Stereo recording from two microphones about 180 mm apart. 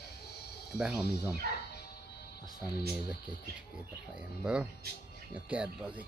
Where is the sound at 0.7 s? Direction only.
5° right (ahead or behind).